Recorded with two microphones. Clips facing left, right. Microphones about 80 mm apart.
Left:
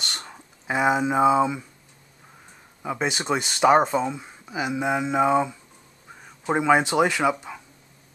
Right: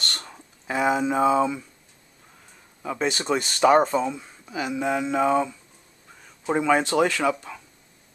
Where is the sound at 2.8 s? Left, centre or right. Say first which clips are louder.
Even; centre.